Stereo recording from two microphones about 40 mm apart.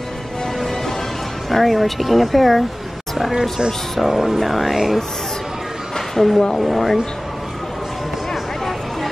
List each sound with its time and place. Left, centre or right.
0.6 s music: centre
1.5 s speech: centre
3.3 s speech: centre
8.3 s a sound: centre